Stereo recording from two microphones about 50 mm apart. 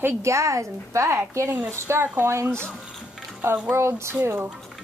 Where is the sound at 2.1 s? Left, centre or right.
Right.